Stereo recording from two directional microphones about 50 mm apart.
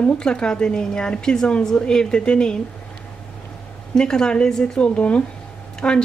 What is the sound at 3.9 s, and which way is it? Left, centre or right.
A woman's voice, centre.